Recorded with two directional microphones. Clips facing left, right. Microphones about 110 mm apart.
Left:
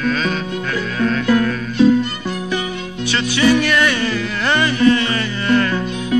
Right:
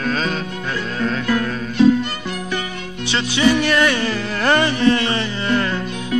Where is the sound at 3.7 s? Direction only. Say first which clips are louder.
Even; 35° right (ahead or behind).